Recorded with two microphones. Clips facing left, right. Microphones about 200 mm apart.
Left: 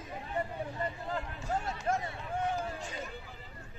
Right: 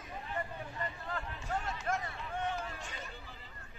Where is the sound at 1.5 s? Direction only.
40° left (ahead or behind).